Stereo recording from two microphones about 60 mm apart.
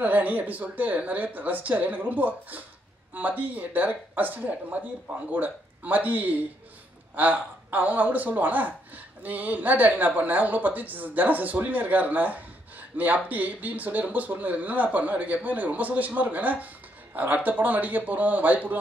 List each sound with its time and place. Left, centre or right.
0.0 s speech: right